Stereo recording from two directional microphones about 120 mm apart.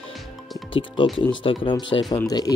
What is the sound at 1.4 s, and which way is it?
Speech, 45° left (ahead or behind).